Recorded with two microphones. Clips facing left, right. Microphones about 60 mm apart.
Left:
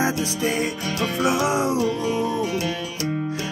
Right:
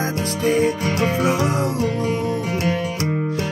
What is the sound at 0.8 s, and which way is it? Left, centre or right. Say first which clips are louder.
Music: right 5 dB; right.